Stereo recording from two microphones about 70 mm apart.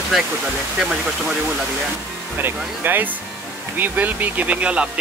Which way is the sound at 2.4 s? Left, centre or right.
Right.